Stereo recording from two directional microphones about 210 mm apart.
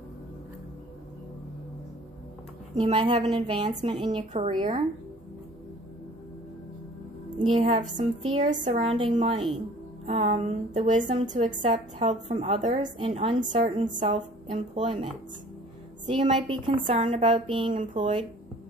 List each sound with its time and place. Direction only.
2.7 s a woman's voice: 25° right (ahead or behind)
7.4 s a woman's voice: 30° right (ahead or behind)
8.2 s a woman's voice: 25° right (ahead or behind)
8.5 s a woman's voice: 35° right (ahead or behind)
8.9 s a woman's voice: 25° right (ahead or behind)
16.1 s a woman's voice: 25° right (ahead or behind)
16.8 s a woman's voice: 35° right (ahead or behind)